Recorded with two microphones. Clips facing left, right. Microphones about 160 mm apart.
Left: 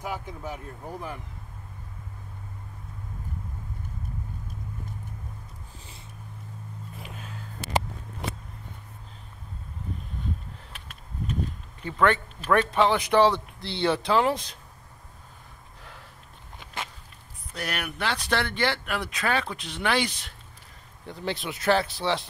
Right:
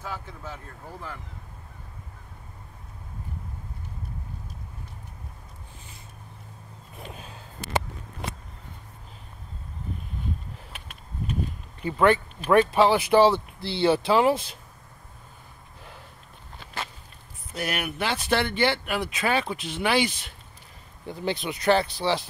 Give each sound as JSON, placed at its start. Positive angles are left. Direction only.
{"t": 0.0, "sound": "speech", "side_deg": 15}
{"t": 7.0, "sound": "a sound", "side_deg": -25}
{"t": 11.8, "sound": "speech", "side_deg": -10}
{"t": 17.5, "sound": "speech", "side_deg": -5}